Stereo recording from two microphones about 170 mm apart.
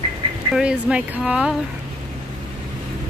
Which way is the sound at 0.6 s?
5° right (ahead or behind).